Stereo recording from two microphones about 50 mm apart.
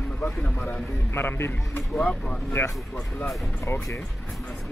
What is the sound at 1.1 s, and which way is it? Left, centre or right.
Speech, left.